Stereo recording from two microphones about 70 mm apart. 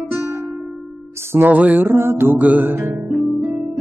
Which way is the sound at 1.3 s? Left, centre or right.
Right.